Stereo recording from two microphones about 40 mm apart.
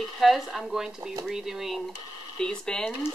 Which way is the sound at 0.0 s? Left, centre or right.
Centre.